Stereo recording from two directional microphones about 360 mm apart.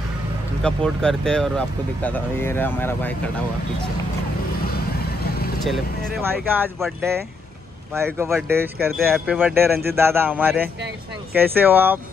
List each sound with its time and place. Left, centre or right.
0.6 s speech: centre
4.6 s vehicle: left
5.7 s speech: centre